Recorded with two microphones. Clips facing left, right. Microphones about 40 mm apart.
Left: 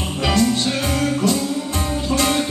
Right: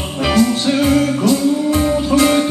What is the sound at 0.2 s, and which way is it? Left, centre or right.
Music, centre.